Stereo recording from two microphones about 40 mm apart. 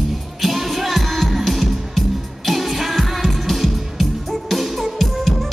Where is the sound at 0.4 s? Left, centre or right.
Centre.